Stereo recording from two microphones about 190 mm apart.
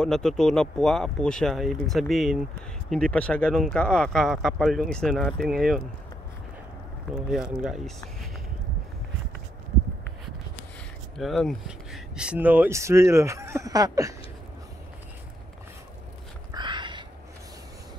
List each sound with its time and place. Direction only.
0.0 s speech: centre (ahead or behind)
7.2 s speech: 5° right (ahead or behind)
11.1 s speech: centre (ahead or behind); by 14.1 s 20° right (ahead or behind)
16.5 s a sound: 25° right (ahead or behind)